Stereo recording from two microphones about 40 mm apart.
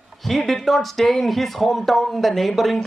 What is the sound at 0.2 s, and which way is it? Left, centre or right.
Speech, centre.